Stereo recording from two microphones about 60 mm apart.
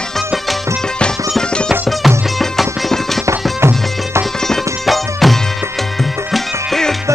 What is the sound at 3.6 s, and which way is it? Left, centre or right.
Music, right.